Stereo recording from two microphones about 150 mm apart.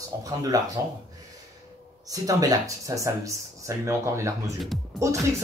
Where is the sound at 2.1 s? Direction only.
20° right (ahead or behind).